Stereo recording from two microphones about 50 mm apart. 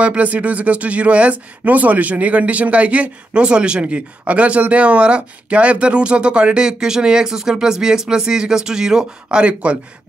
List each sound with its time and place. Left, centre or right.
0.0 s speech: right